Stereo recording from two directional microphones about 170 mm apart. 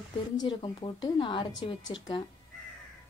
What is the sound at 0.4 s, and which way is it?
Speech, 25° left (ahead or behind).